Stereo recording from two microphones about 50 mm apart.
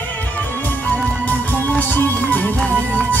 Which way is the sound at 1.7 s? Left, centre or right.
Left.